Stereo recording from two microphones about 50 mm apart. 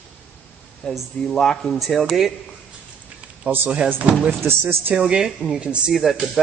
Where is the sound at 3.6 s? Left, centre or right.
Right.